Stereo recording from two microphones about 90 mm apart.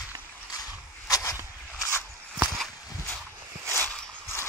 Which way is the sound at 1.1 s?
35° left (ahead or behind).